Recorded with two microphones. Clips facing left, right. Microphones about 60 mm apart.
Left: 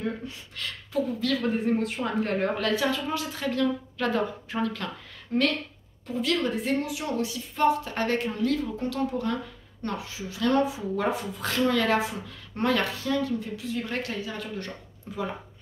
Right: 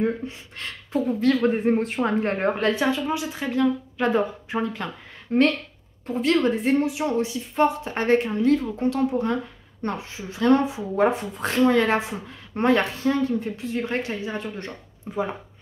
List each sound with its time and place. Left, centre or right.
0.0 s speech: right
6.0 s speech: right